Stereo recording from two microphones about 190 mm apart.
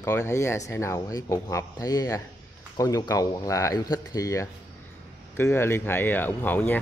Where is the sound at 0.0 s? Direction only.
15° left (ahead or behind).